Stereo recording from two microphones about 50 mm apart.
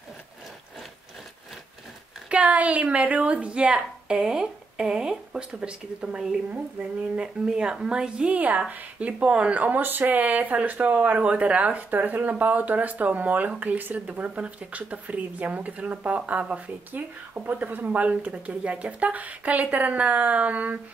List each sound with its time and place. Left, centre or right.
2.2 s speech: right; by 5.6 s centre
5.6 s speech: centre
8.3 s speech: right
11.9 s speech: right